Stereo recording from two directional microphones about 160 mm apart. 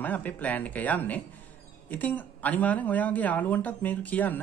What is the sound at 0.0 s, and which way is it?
Speech, 10° left (ahead or behind).